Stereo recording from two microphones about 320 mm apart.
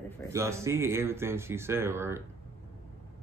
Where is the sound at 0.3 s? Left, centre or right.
Centre.